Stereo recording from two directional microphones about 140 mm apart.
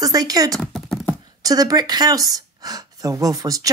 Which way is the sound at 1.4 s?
25° right (ahead or behind).